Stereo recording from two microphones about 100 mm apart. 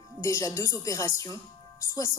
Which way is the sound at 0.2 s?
30° left (ahead or behind).